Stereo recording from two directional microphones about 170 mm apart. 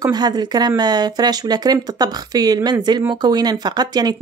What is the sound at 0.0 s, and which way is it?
Speech, 25° right (ahead or behind).